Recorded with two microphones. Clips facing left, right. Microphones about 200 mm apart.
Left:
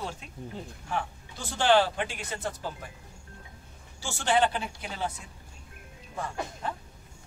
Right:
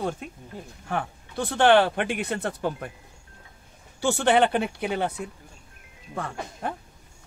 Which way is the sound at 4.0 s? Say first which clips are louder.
Right 6 dB; 60° right (ahead or behind).